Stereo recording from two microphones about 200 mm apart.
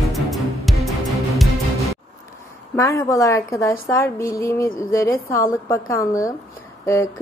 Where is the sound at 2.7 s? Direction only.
15° left (ahead or behind).